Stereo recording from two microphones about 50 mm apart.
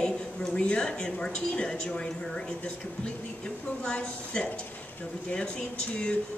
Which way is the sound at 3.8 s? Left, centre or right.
Centre.